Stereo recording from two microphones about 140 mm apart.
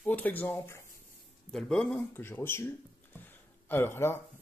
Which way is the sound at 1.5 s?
5° left (ahead or behind).